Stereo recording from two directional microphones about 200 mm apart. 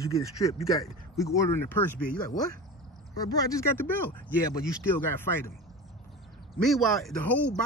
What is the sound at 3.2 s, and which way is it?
Speech, 15° left (ahead or behind).